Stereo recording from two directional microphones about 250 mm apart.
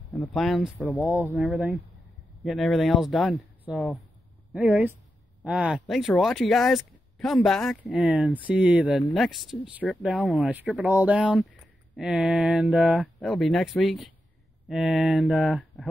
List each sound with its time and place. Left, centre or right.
0.1 s speech: centre